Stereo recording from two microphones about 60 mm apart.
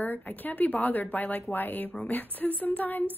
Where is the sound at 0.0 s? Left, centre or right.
Left.